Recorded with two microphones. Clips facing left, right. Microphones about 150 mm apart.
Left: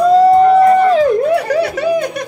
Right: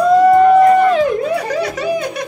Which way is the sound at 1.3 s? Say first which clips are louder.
Left 4 dB; 60° left (ahead or behind).